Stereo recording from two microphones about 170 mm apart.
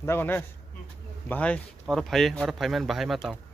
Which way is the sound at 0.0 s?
10° left (ahead or behind).